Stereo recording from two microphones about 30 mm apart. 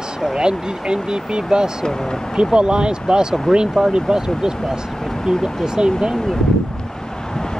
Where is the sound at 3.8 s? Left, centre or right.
Centre.